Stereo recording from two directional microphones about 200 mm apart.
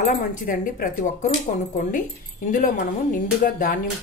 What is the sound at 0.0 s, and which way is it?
A woman's voice, 40° left (ahead or behind).